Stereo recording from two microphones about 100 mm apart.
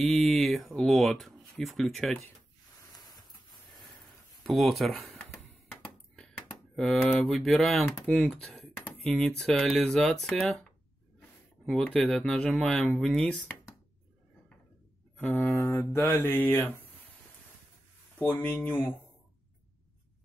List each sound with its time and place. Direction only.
0.0 s mantra: centre (ahead or behind)
0.7 s speech: 5° left (ahead or behind)
4.4 s speech: centre (ahead or behind)
5.5 s a sound: 15° left (ahead or behind)
6.2 s speech: centre (ahead or behind)
15.1 s speech: 10° left (ahead or behind)
15.5 s music: 25° left (ahead or behind)
18.2 s speech: 15° left (ahead or behind)